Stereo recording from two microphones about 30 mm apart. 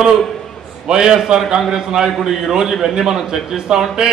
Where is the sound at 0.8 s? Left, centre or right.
Centre.